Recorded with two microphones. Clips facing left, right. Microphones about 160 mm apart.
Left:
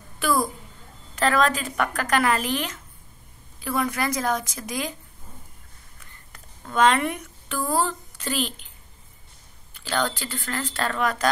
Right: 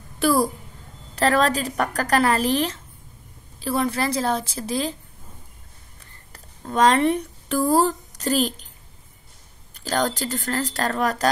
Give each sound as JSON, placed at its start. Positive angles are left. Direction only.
{"t": 0.2, "sound": "a child's voice", "side_deg": -35}
{"t": 5.9, "sound": "a sound", "side_deg": -35}
{"t": 9.8, "sound": "a woman's voice", "side_deg": -40}